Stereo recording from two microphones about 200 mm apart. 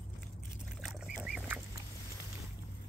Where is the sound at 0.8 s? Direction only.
Centre (ahead or behind).